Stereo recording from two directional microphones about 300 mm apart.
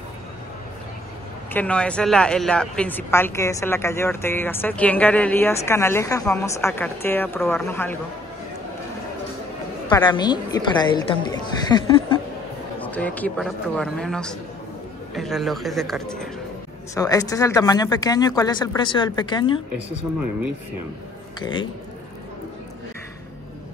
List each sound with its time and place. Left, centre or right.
1.5 s a woman's voice: centre
9.8 s a woman's voice: centre
16.9 s a woman's voice: centre
21.4 s a woman's voice: centre